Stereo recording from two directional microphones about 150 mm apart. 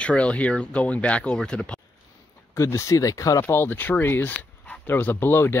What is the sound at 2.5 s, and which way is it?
Speech, 20° left (ahead or behind).